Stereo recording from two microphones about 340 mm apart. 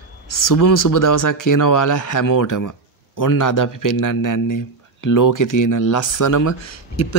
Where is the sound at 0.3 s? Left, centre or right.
Left.